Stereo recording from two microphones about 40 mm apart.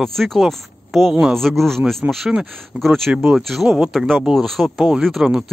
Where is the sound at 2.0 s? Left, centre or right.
Right.